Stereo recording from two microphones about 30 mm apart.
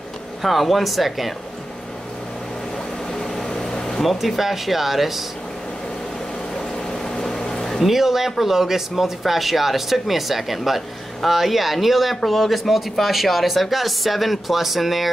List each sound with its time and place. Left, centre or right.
0.4 s speech: centre
3.2 s vehicle: centre
4.0 s speech: centre
6.9 s a sound: left
7.8 s speech: centre